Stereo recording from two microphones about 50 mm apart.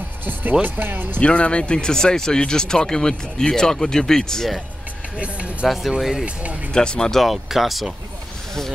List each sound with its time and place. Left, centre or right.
0.2 s speech: right
1.2 s speech: left
5.2 s speech: right
5.7 s speech: centre
6.7 s speech: centre
7.2 s speech: centre